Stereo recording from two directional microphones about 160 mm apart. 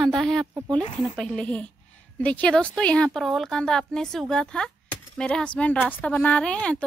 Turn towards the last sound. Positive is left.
turn(degrees=5)  # may be behind; listen again after turning